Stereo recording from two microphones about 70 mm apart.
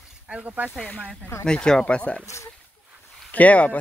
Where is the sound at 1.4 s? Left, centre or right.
Centre.